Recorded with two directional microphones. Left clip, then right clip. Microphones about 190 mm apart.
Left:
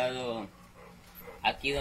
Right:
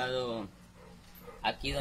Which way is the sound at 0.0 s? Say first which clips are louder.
Left 2 dB; 15° right (ahead or behind).